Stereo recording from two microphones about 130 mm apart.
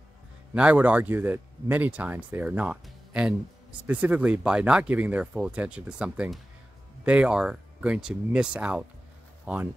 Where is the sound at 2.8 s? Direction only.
5° right (ahead or behind).